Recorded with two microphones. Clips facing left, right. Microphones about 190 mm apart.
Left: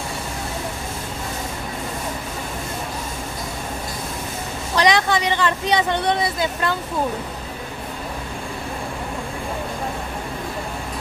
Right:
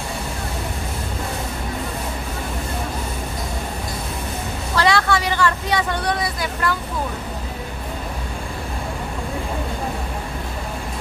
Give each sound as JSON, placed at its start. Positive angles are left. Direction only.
{"t": 4.7, "sound": "speech", "side_deg": 20}